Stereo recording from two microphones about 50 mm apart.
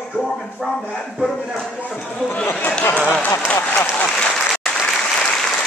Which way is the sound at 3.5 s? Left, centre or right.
Left.